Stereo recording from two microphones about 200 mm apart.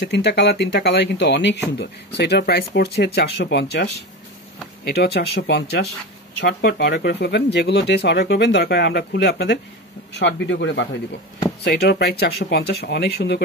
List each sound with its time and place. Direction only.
0.0 s speech: 60° left (ahead or behind)